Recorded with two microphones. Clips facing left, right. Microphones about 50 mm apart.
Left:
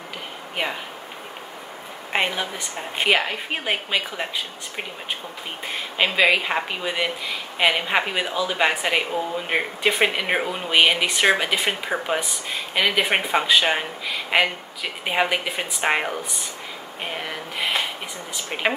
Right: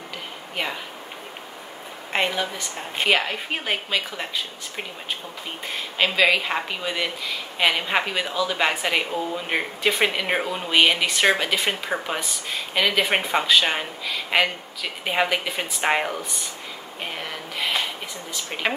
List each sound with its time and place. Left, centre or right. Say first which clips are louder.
0.6 s speech: left 2 dB; centre
2.1 s speech: even; centre